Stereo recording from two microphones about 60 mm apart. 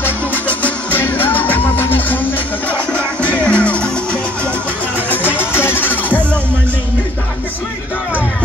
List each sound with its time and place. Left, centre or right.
0.0 s music: left
2.7 s music: left
5.1 s music: left